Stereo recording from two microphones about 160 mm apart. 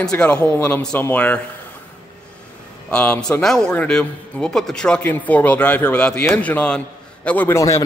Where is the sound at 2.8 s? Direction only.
10° left (ahead or behind).